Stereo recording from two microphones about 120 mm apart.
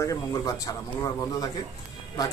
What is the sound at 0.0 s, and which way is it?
Speech, 30° left (ahead or behind).